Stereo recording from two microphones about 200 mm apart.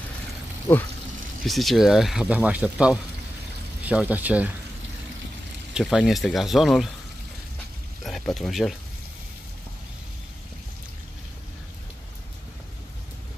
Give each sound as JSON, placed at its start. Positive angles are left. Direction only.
{"t": 0.7, "sound": "speech", "side_deg": 15}
{"t": 1.4, "sound": "speech", "side_deg": 0}
{"t": 5.8, "sound": "speech", "side_deg": 0}
{"t": 8.0, "sound": "a sound", "side_deg": 0}
{"t": 8.4, "sound": "speech", "side_deg": 0}